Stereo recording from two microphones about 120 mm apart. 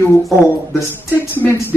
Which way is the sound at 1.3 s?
20° left (ahead or behind).